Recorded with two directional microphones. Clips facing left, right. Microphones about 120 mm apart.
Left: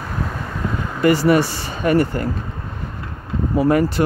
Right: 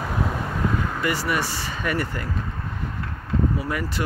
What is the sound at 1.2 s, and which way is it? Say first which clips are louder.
Speech: left 10 dB; 30° left (ahead or behind).